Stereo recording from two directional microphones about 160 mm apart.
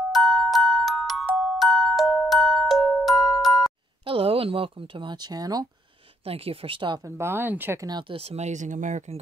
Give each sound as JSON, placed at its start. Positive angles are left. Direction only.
{"t": 0.1, "sound": "glockenspiel", "side_deg": 0}
{"t": 4.0, "sound": "speech", "side_deg": -35}
{"t": 6.2, "sound": "speech", "side_deg": -35}
{"t": 7.1, "sound": "speech", "side_deg": -15}
{"t": 8.1, "sound": "speech", "side_deg": -40}